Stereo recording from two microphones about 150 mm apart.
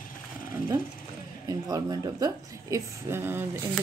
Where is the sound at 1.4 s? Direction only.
25° right (ahead or behind).